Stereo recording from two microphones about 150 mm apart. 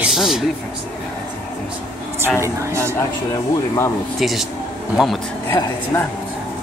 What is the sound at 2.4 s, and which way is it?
Speech, 20° right (ahead or behind).